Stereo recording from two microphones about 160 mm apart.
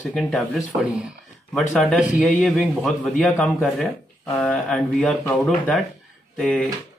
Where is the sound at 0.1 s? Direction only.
Centre (ahead or behind).